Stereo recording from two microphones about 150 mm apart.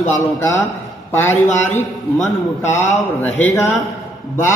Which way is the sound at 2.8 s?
10° left (ahead or behind).